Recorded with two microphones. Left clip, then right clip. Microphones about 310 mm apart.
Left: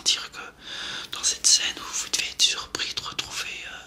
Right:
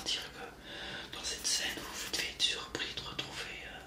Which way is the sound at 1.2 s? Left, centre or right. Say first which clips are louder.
Left 14 dB; left.